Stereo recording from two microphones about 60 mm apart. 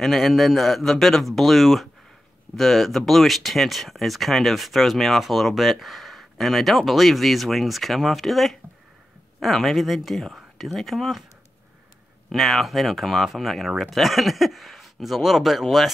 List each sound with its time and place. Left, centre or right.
0.0 s speech: centre
12.3 s speech: centre